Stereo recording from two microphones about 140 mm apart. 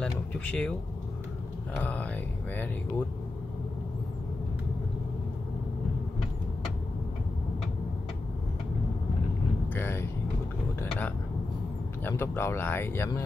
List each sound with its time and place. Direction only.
0.0 s speech: 5° left (ahead or behind)
1.8 s speech: 10° left (ahead or behind)
9.8 s speech: 15° left (ahead or behind)